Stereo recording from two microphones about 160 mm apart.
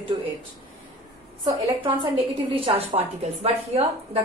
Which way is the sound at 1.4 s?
30° right (ahead or behind).